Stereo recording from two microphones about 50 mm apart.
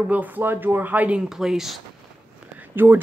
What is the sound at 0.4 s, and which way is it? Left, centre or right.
Speech, right.